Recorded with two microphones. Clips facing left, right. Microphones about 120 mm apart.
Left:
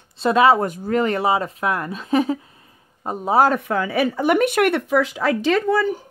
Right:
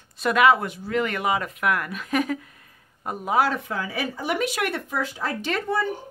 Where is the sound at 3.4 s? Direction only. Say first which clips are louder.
Left 7 dB; 55° left (ahead or behind); by 5.8 s 90° left.